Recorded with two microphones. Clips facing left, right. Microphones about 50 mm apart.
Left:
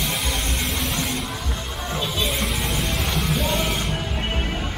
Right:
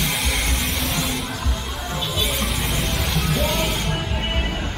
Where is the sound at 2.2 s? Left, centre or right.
Centre.